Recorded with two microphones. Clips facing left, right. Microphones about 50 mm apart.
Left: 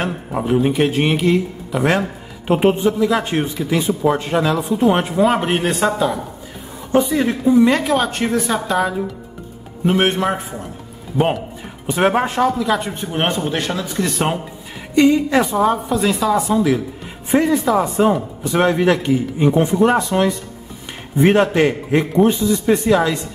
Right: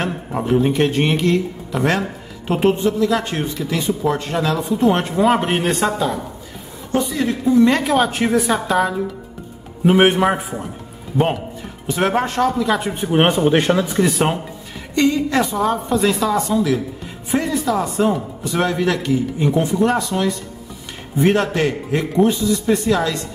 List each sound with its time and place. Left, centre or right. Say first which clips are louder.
0.0 s speech: left 1 dB; centre
6.9 s speech: left 3 dB; left
7.6 s a woman's voice: even; centre
9.8 s a man's voice: right 3 dB; centre
11.9 s speech: left 2 dB; centre
12.4 s a woman's voice: even; centre
12.9 s a man's voice: right 4 dB; centre
13.9 s a woman's voice: right 2 dB; centre
15.0 s speech: left 3 dB; centre
15.9 s a woman's voice: even; centre
16.4 s speech: left 2 dB; centre